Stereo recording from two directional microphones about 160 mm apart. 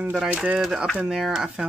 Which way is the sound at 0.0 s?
10° right (ahead or behind).